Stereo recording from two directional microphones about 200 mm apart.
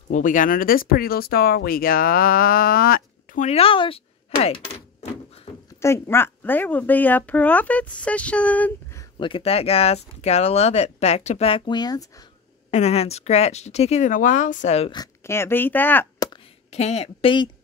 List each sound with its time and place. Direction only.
0.1 s speech: 40° left (ahead or behind)
3.4 s speech: 30° left (ahead or behind)
5.8 s speech: 15° left (ahead or behind)
9.2 s speech: 30° left (ahead or behind)
12.7 s speech: 30° left (ahead or behind)
15.0 s speech: 15° left (ahead or behind)
16.3 s a sound: 30° left (ahead or behind)